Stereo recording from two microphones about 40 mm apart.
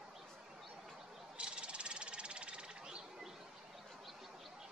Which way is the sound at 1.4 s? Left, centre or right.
Right.